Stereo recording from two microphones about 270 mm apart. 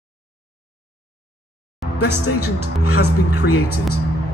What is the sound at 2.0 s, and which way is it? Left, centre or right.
A woman's voice, left.